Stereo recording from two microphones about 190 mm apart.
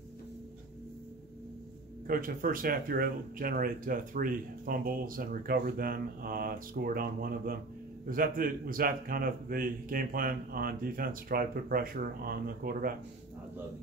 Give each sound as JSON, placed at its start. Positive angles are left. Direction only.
{"t": 2.0, "sound": "speech", "side_deg": -50}